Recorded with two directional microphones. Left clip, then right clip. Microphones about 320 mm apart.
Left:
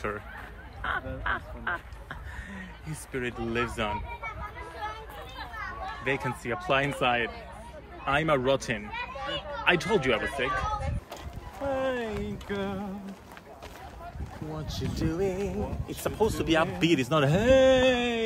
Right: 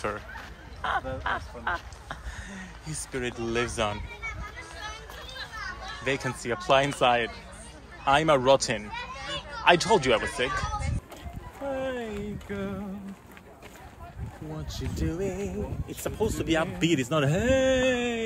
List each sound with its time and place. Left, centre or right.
0.8 s speech: centre
5.4 s children playing: centre
6.0 s speech: centre
8.9 s a child's voice: left
9.7 s speech: centre
11.7 s speech: centre
14.7 s speech: centre